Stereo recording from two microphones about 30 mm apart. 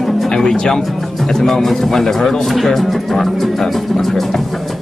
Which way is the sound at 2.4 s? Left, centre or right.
Centre.